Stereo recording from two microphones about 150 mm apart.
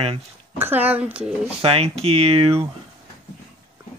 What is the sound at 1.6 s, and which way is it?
Speech, 40° right (ahead or behind).